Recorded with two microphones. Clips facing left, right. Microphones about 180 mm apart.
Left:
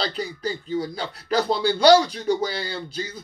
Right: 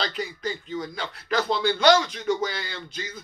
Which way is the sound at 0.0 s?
35° left (ahead or behind).